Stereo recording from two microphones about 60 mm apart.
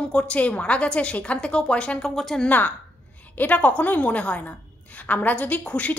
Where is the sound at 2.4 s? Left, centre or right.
Left.